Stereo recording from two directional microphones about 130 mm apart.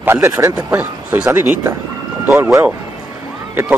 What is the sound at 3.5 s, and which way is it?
Speech, 15° right (ahead or behind).